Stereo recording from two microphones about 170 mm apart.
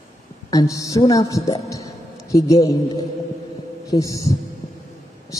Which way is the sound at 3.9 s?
20° left (ahead or behind).